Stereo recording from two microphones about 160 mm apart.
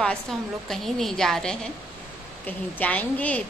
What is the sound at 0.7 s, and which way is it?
A woman's voice, centre (ahead or behind).